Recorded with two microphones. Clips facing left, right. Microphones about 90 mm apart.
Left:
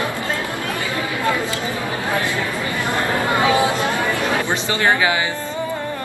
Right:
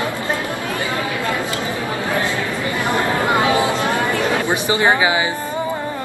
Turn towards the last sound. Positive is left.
turn(degrees=-20)  # may be behind; listen again after turning